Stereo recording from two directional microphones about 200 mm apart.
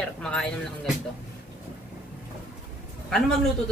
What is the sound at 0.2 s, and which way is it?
Speech, 5° left (ahead or behind).